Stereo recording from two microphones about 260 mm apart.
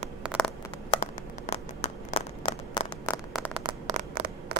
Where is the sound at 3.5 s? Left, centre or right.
Centre.